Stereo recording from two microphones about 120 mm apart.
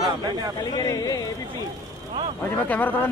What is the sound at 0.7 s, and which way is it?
Speech, 30° left (ahead or behind).